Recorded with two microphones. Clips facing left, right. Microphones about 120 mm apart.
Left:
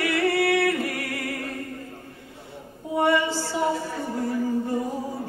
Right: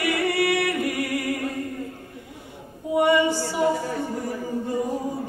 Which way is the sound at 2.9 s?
15° right (ahead or behind).